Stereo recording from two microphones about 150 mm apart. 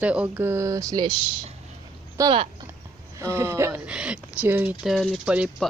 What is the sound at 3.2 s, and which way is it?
Speech, 15° right (ahead or behind).